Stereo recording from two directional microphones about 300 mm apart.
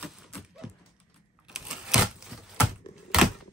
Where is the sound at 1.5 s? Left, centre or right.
Centre.